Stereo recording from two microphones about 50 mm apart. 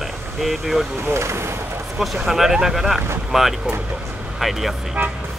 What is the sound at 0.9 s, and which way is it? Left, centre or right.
Speech, right.